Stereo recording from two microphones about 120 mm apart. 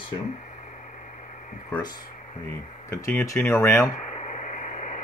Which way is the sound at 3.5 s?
20° left (ahead or behind).